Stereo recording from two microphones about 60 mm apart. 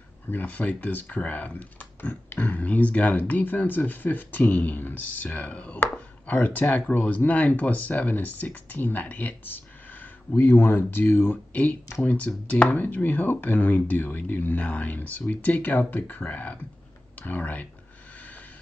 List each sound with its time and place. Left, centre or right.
0.3 s speech: left